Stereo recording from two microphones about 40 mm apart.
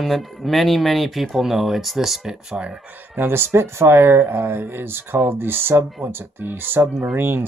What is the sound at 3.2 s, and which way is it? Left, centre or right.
Speech, right.